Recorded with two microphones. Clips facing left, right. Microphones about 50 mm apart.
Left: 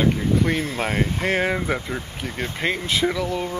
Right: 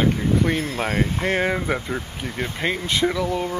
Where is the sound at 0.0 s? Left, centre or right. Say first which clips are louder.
Even; centre.